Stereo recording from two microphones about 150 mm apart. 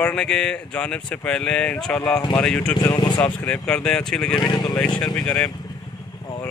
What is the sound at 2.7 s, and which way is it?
Speech, 25° left (ahead or behind).